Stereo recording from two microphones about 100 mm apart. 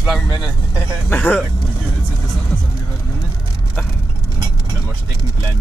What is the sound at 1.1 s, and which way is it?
Speech, 15° left (ahead or behind).